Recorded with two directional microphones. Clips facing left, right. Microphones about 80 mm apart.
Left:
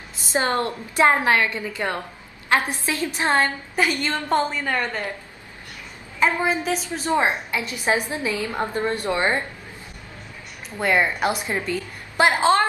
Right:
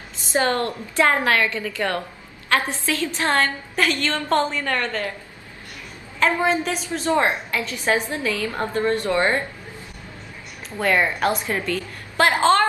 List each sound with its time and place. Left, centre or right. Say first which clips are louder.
0.3 s a woman's voice: right 1 dB; left
6.1 s a woman's voice: right 1 dB; centre
10.8 s a woman's voice: right 1 dB; centre